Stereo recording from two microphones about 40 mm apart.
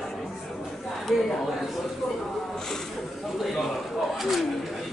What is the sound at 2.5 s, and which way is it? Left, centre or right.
Speech, centre.